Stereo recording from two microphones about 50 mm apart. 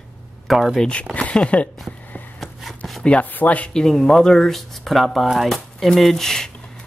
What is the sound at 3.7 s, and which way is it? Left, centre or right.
Speech, centre.